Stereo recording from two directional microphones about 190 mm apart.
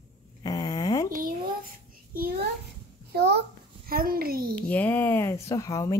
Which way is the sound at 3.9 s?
50° right (ahead or behind).